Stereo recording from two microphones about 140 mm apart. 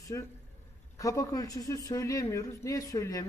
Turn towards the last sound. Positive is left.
turn(degrees=25)  # may be behind; listen again after turning